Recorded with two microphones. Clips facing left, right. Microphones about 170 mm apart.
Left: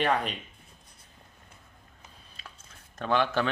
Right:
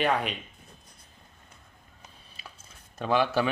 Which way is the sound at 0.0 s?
5° right (ahead or behind).